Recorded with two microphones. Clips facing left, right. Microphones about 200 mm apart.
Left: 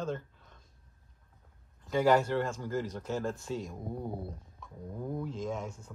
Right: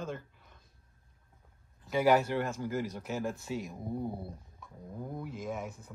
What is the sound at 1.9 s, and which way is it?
Speech, 10° right (ahead or behind).